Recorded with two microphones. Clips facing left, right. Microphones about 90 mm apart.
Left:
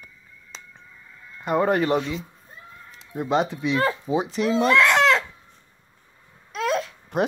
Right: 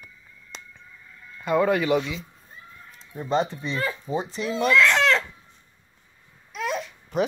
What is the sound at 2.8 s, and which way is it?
Speech, 90° left.